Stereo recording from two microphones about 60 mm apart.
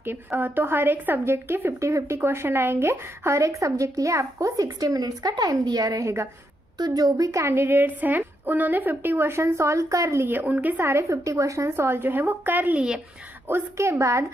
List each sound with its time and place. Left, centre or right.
0.0 s a woman's voice: right
1.8 s speech: right
2.1 s a woman's voice: right
7.5 s a woman's voice: right
9.4 s a woman's voice: right
10.4 s speech: right
10.9 s a woman's voice: right
13.5 s a woman's voice: right